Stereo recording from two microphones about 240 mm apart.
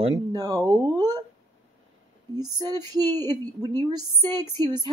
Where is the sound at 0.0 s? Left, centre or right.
Centre.